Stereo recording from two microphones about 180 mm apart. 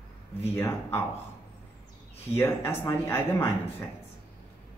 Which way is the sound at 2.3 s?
15° left (ahead or behind).